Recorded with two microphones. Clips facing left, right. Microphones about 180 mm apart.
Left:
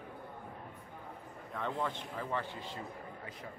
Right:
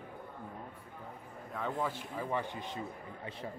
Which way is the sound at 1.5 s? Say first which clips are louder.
Right 1 dB; 5° right (ahead or behind).